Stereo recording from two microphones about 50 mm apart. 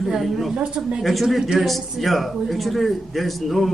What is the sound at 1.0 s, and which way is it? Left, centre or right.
A man's voice, centre.